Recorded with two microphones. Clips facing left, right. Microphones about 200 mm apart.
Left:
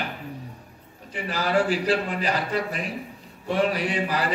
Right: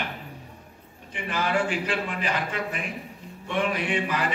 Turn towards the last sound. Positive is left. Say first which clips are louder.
# left 1 dB
turn(degrees=35)  # may be behind; listen again after turning